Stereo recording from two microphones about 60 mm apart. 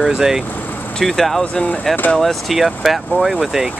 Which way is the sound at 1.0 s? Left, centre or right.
Centre.